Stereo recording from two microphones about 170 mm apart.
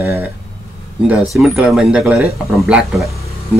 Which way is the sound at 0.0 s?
15° right (ahead or behind).